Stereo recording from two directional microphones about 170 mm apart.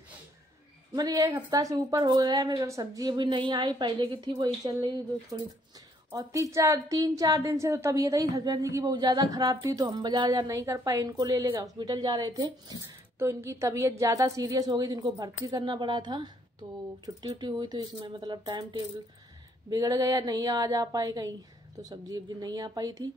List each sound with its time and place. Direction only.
0.9 s a woman's voice: 25° right (ahead or behind)